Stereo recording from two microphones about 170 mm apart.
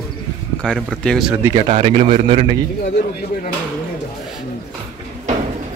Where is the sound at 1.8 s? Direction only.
50° right (ahead or behind).